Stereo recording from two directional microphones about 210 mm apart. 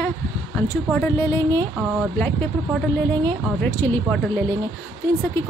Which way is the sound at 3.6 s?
10° left (ahead or behind).